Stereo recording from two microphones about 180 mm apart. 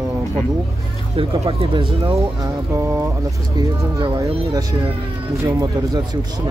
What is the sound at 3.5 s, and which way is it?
Speech, 25° right (ahead or behind).